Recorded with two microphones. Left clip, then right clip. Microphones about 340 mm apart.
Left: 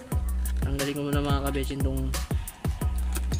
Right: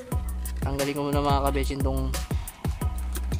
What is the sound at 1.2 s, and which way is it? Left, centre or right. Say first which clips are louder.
Music: right 5 dB; centre.